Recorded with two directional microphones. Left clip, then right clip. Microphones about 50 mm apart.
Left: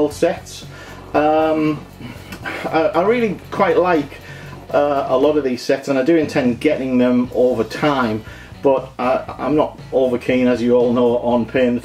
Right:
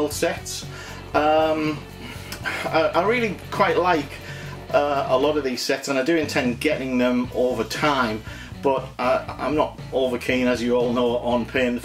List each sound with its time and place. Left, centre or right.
0.0 s speech: right